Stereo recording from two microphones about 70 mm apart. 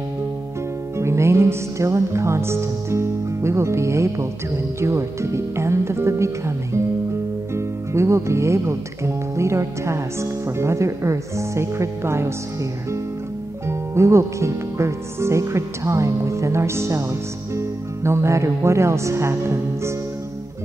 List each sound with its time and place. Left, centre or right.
0.9 s speech: right
13.7 s speech: right